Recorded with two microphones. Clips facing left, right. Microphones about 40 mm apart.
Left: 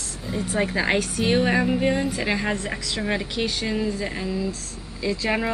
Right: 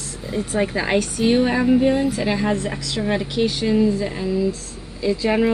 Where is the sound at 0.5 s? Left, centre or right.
Centre.